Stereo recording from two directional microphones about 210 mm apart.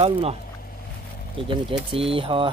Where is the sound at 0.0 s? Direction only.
30° right (ahead or behind).